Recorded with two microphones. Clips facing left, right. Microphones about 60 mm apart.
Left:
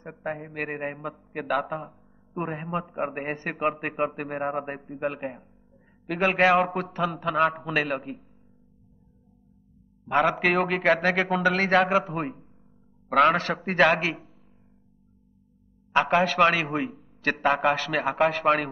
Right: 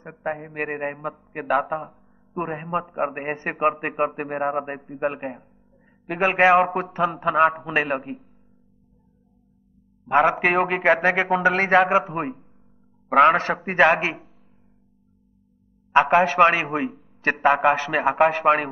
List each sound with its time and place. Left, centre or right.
0.0 s mantra: centre
0.6 s a man's voice: centre
10.0 s a man's voice: centre
10.7 s a man's voice: right
13.2 s a man's voice: right
15.9 s a man's voice: right
17.2 s a man's voice: right
17.5 s a man's voice: centre
18.4 s a man's voice: centre